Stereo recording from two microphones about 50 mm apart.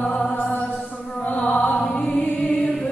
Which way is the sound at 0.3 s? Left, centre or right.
Left.